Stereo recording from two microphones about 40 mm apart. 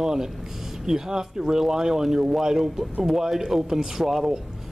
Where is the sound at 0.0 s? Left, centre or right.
Centre.